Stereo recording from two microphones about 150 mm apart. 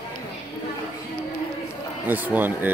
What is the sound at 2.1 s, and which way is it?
Speech, 10° right (ahead or behind).